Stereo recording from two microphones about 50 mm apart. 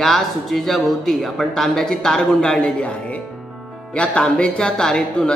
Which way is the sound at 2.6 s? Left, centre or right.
Left.